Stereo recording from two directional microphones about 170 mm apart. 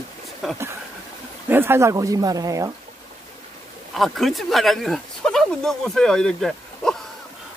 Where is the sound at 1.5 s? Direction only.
15° right (ahead or behind).